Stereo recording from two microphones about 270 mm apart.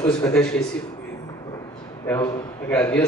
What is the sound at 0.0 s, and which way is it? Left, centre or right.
Speech, centre.